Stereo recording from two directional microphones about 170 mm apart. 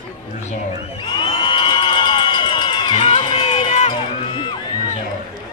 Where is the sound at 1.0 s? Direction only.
30° left (ahead or behind).